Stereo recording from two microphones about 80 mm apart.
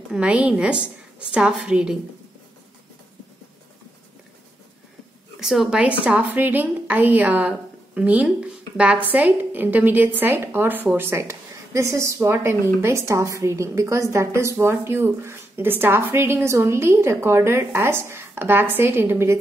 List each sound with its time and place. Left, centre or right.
0.1 s a woman's voice: centre
5.4 s speech: centre
5.8 s a woman's voice: centre